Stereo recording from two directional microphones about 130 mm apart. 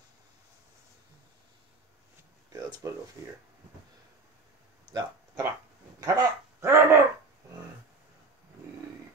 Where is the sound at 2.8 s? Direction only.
20° right (ahead or behind).